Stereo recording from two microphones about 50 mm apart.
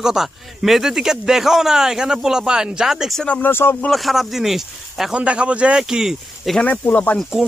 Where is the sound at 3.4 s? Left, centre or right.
Left.